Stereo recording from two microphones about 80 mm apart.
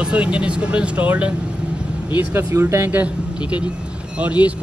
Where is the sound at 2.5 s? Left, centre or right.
Right.